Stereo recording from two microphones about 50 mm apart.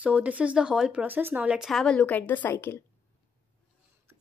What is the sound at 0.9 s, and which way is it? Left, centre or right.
Speech, right.